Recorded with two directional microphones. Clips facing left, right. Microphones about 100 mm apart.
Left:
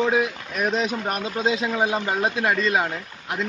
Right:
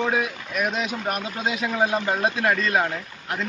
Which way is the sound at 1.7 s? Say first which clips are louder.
Even; 15° left (ahead or behind).